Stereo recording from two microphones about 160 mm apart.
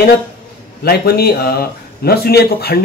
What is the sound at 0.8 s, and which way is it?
A man's voice, 75° left (ahead or behind).